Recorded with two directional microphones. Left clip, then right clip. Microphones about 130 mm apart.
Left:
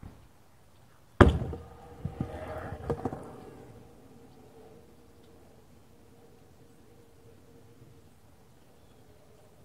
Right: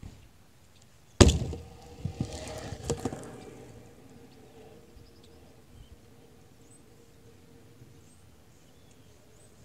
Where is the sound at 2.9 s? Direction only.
25° right (ahead or behind).